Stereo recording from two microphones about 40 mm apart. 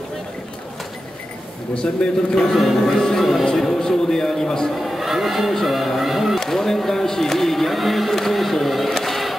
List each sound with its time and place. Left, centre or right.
2.0 s a man's voice: left
2.5 s music: centre
3.5 s a man's voice: centre
4.8 s speech: centre
6.4 s speech: centre